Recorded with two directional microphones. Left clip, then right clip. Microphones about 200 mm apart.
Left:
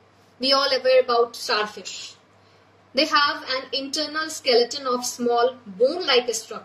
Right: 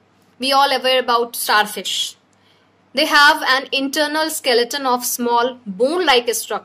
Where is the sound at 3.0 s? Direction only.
40° right (ahead or behind).